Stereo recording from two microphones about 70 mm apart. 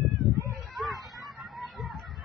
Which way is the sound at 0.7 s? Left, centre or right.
Centre.